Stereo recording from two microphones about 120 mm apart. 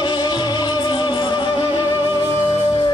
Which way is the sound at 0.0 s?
40° left (ahead or behind).